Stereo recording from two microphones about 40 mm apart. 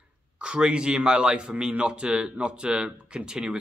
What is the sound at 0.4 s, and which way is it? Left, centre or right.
Speech, right.